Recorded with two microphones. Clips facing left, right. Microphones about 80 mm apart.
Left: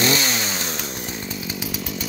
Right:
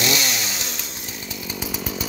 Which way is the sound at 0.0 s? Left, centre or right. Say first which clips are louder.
Left 3 dB; left.